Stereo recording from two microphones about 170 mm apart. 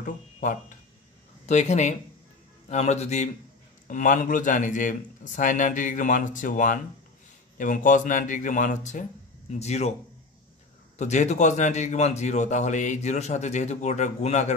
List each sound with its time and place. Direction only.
0.0 s a man's voice: 50° left (ahead or behind)
11.0 s a man's voice: 40° left (ahead or behind)